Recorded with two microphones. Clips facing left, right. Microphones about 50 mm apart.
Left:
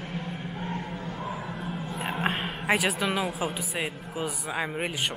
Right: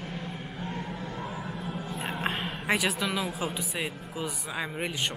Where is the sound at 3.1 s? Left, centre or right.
Centre.